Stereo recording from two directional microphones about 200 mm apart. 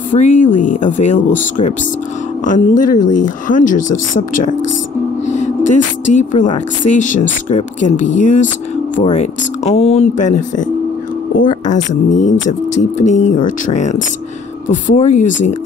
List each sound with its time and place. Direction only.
0.1 s speech: 35° left (ahead or behind)
5.2 s a sound: 35° left (ahead or behind)
6.5 s speech: 40° left (ahead or behind)